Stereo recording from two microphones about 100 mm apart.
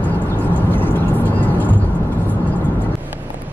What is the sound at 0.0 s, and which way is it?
Vehicle, 15° left (ahead or behind).